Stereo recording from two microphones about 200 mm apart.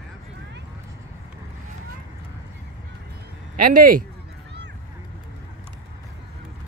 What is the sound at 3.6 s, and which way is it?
Speech, 45° right (ahead or behind).